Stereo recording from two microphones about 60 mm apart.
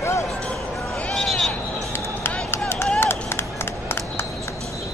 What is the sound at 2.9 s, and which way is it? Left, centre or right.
Run, left.